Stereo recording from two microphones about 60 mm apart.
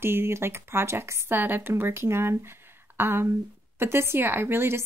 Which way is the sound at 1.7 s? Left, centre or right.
Right.